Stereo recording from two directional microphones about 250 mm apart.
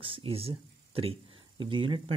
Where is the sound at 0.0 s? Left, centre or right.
Right.